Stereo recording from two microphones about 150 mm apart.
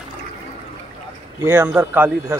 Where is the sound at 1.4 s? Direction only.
15° right (ahead or behind).